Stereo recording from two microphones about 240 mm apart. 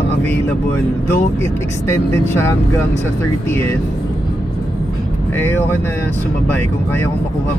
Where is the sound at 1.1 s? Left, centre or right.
Centre.